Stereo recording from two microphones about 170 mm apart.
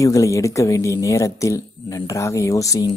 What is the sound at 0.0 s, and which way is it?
Speech, 20° left (ahead or behind).